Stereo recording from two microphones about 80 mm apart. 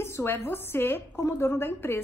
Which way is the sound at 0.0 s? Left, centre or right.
Left.